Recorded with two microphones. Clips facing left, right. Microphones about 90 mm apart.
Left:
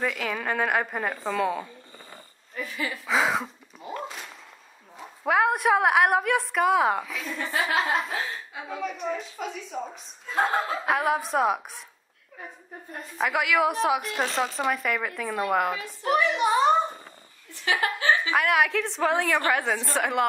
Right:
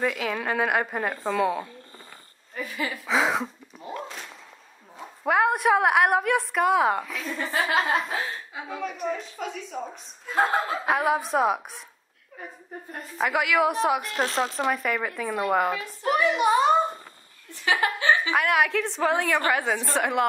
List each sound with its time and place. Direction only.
0.0 s a woman's voice: centre (ahead or behind)
3.1 s a sound: centre (ahead or behind)
4.9 s a woman's voice: centre (ahead or behind)
13.2 s a woman's voice: centre (ahead or behind)
16.3 s a sound: 5° right (ahead or behind)
17.7 s a woman's voice: 35° right (ahead or behind)
18.3 s a woman's voice: centre (ahead or behind)